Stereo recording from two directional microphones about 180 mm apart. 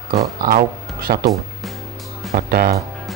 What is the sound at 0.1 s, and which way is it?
Speech, 55° right (ahead or behind).